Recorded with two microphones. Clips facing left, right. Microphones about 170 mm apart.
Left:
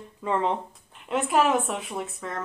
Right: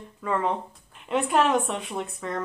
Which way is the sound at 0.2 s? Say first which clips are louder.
Left 1 dB; 20° left (ahead or behind).